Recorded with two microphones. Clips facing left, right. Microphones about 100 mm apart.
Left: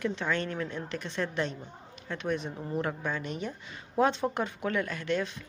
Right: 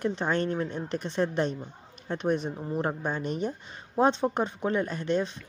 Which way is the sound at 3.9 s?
30° right (ahead or behind).